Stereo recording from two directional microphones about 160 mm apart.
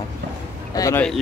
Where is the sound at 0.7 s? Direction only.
20° left (ahead or behind).